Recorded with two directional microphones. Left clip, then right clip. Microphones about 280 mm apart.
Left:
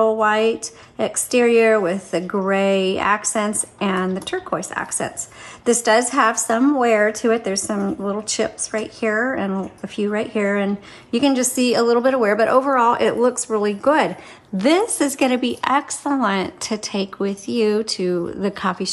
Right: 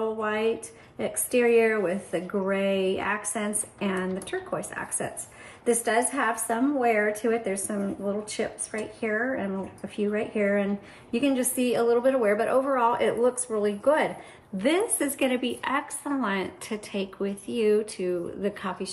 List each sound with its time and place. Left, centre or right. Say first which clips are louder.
0.0 s a woman's voice: left 11 dB; centre